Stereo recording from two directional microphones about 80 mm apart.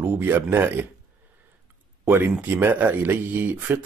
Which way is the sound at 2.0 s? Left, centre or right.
Right.